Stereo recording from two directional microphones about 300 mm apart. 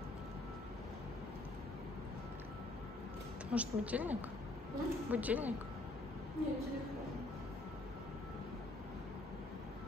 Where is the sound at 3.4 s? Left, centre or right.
Centre.